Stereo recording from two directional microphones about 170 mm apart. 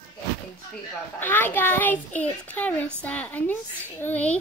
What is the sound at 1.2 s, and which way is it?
A child's voice, 10° left (ahead or behind).